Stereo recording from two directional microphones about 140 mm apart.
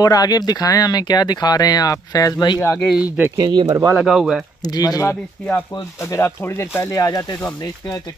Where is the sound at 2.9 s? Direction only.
10° right (ahead or behind).